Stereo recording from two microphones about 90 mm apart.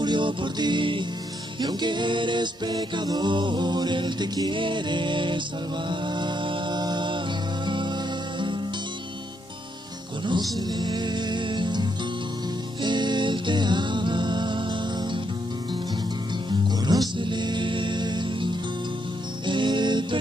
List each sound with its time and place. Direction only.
0.0 s music: 60° right (ahead or behind)
1.6 s music: 55° right (ahead or behind)
10.7 s music: 50° right (ahead or behind)
16.4 s music: 55° right (ahead or behind)
17.2 s music: 60° right (ahead or behind)